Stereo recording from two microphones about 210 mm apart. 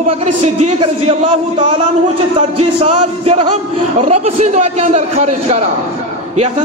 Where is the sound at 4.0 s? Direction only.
30° right (ahead or behind).